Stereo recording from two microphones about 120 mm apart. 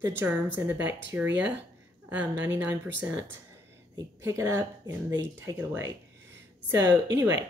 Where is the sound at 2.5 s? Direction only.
25° right (ahead or behind).